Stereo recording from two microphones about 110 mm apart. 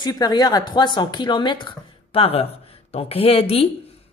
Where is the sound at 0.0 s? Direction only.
40° left (ahead or behind).